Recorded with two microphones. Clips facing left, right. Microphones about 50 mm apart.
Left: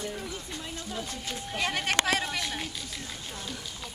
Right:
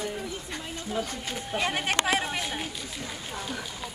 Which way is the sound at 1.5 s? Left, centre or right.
Centre.